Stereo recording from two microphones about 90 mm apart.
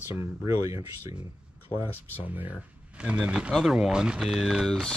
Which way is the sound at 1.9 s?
20° left (ahead or behind).